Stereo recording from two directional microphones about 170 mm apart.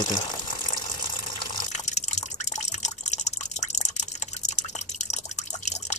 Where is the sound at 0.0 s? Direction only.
25° left (ahead or behind).